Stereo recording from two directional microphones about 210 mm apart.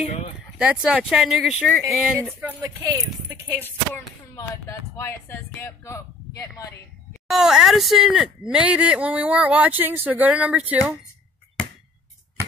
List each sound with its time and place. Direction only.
0.0 s a sound: 30° left (ahead or behind)
0.6 s speech: 5° right (ahead or behind)
2.4 s speech: 15° right (ahead or behind)
3.6 s speech: 10° left (ahead or behind)
7.2 s speech: centre (ahead or behind)